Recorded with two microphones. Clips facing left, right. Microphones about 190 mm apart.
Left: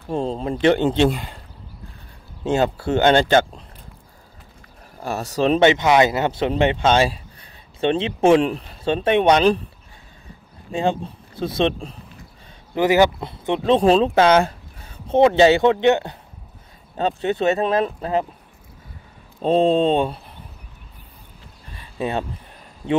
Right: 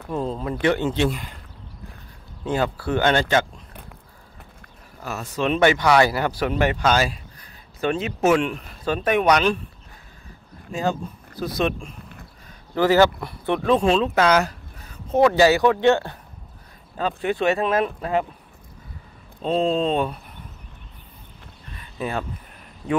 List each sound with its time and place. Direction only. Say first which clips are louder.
0.1 s speech: left 3 dB; 25° left (ahead or behind)
2.4 s speech: left 4 dB; 25° left (ahead or behind)
5.0 s speech: left 5 dB; 35° left (ahead or behind)
5.6 s speech: left 1 dB; 20° left (ahead or behind)
10.7 s speech: left 3 dB; 30° left (ahead or behind)
12.7 s speech: left 1 dB; 15° left (ahead or behind); by 18.2 s 30° left (ahead or behind)
19.4 s speech: left 5 dB; 35° left (ahead or behind)
21.7 s a sound: left 3 dB; 25° left (ahead or behind)